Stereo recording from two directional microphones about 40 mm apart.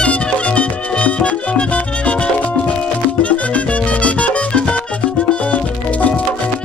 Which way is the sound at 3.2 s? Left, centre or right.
Left.